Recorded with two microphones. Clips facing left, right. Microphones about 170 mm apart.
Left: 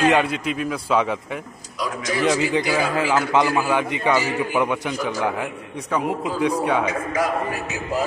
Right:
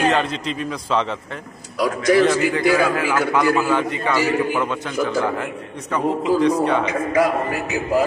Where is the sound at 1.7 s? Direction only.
50° right (ahead or behind).